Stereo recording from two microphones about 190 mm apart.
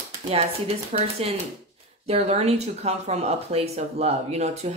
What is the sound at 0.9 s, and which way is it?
Speech, 35° right (ahead or behind).